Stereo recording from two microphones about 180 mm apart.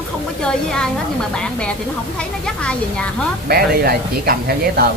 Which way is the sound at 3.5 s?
55° right (ahead or behind).